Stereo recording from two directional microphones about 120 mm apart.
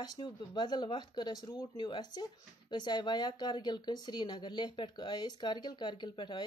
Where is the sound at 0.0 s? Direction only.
35° left (ahead or behind).